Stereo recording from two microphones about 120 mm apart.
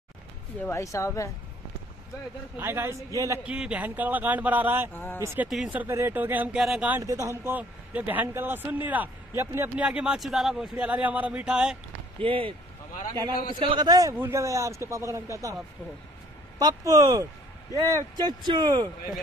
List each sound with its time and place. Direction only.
0.6 s speech: 25° left (ahead or behind)
2.5 s speech: 20° right (ahead or behind)
3.4 s speech: 10° right (ahead or behind)
4.9 s speech: 15° left (ahead or behind)
5.2 s speech: 20° right (ahead or behind)
7.0 s speech: 25° right (ahead or behind)
9.8 s speech: 10° right (ahead or behind)
12.2 s speech: 50° right (ahead or behind)
13.6 s speech: 40° right (ahead or behind)
14.1 s speech: 20° right (ahead or behind)
16.5 s speech: 30° right (ahead or behind)